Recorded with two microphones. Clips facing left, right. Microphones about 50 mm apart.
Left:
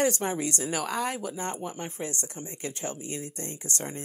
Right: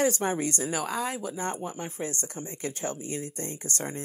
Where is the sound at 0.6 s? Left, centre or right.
Left.